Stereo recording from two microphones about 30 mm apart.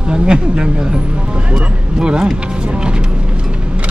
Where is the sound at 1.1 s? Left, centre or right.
Right.